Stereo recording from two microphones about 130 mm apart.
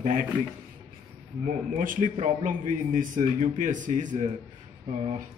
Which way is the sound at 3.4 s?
80° right.